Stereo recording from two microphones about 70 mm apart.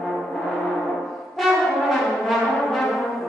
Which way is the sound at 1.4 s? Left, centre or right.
Centre.